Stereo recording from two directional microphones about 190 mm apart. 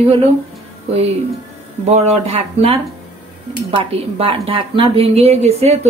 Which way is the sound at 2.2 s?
30° right (ahead or behind).